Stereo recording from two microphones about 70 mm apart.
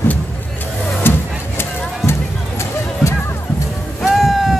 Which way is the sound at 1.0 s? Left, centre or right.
Left.